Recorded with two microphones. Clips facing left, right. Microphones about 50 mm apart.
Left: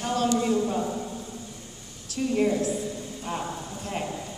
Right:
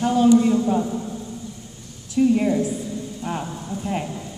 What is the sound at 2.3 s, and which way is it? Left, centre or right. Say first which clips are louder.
A man's voice: right 4 dB; centre.